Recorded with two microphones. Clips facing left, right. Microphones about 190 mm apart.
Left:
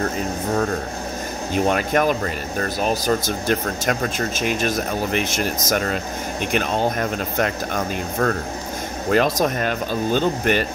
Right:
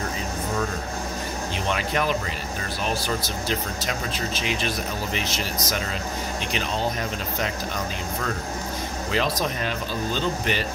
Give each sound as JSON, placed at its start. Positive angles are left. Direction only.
{"t": 1.5, "sound": "speech", "side_deg": 45}